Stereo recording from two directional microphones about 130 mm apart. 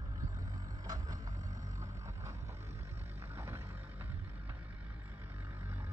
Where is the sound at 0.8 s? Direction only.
30° right (ahead or behind).